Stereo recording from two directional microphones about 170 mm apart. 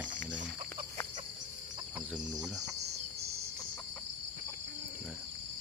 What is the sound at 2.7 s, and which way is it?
Cricket, 75° right (ahead or behind).